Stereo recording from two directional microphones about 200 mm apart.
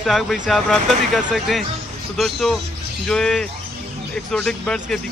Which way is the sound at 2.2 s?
Centre (ahead or behind).